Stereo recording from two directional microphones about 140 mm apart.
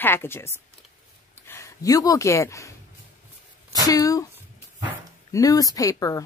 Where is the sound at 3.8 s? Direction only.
25° left (ahead or behind).